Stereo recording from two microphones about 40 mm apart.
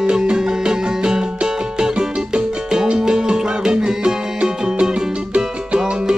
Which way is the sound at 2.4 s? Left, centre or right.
Right.